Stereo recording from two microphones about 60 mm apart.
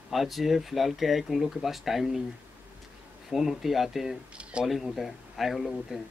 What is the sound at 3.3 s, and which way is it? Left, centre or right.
Speech, centre.